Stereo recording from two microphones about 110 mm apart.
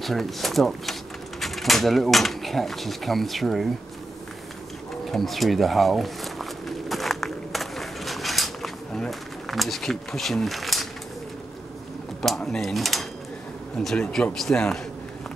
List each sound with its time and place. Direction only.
0.0 s speech: centre (ahead or behind)
5.1 s speech: centre (ahead or behind)
6.9 s a sound: centre (ahead or behind)
12.2 s speech: 5° left (ahead or behind)